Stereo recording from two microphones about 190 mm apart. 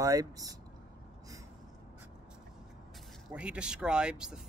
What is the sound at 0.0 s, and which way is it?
Speech, 20° right (ahead or behind).